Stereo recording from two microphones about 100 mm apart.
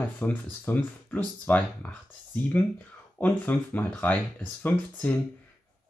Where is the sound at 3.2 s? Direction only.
15° left (ahead or behind).